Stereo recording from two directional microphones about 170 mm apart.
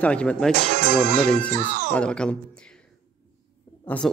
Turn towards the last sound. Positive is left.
turn(degrees=10)  # may be behind; listen again after turning